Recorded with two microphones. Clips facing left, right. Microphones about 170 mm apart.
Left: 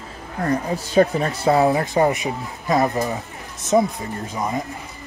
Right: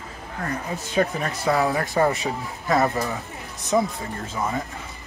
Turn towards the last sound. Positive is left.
turn(degrees=15)  # may be behind; listen again after turning